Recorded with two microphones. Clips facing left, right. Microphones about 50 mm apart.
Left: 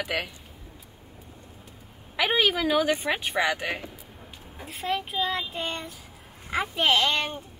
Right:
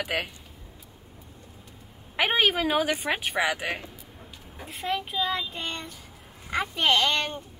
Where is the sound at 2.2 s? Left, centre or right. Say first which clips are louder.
Even; right.